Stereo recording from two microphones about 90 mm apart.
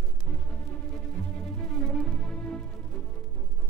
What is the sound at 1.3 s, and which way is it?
Music, 10° left (ahead or behind).